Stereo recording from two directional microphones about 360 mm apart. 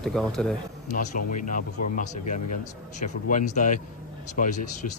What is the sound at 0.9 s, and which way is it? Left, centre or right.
Speech, left.